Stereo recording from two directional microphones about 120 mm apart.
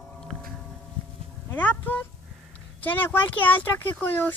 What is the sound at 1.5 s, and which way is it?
Speech, 15° left (ahead or behind).